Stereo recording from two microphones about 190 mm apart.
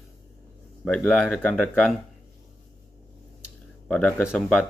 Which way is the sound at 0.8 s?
5° left (ahead or behind).